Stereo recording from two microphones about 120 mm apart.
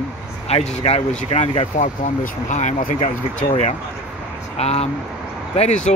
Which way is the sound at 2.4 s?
85° left.